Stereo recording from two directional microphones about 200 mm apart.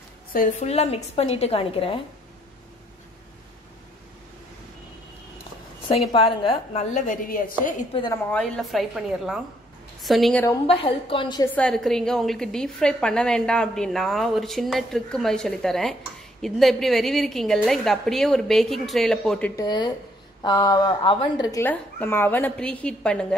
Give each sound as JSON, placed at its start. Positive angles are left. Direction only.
{"t": 0.3, "sound": "a woman's voice", "side_deg": 40}
{"t": 6.2, "sound": "a woman's voice", "side_deg": 25}
{"t": 7.9, "sound": "a woman's voice", "side_deg": 20}
{"t": 8.3, "sound": "a woman's voice", "side_deg": 0}
{"t": 10.7, "sound": "a woman's voice", "side_deg": 25}
{"t": 11.5, "sound": "a woman's voice", "side_deg": 5}
{"t": 19.5, "sound": "a woman's voice", "side_deg": 20}